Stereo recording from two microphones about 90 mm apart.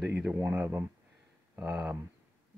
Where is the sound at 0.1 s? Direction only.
25° right (ahead or behind).